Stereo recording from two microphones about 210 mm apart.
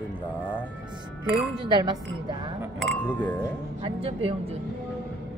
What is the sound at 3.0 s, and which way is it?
Speech, 5° left (ahead or behind).